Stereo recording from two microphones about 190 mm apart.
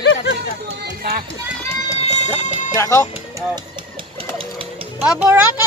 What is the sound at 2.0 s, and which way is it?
Music, 40° left (ahead or behind).